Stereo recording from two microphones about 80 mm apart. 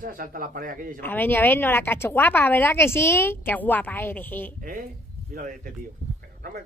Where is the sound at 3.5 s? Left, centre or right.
Left.